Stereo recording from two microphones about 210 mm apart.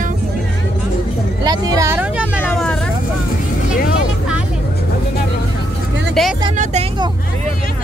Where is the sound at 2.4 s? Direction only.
5° left (ahead or behind).